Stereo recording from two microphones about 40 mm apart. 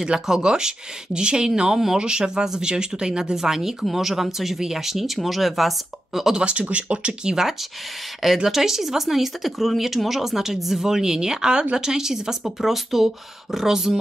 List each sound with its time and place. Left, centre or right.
0.0 s speech: centre
6.3 s speech: right
8.5 s speech: centre